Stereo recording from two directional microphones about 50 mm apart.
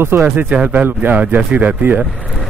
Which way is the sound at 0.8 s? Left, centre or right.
Right.